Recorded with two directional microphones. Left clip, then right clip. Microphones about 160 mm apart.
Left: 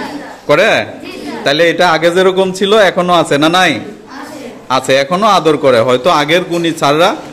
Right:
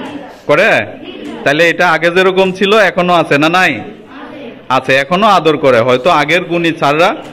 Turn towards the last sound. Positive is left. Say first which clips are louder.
# even
turn(degrees=15)  # may be behind; listen again after turning